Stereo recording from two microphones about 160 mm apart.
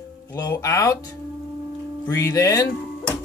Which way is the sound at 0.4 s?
20° left (ahead or behind).